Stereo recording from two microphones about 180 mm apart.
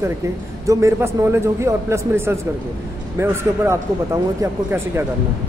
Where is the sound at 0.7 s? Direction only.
15° right (ahead or behind).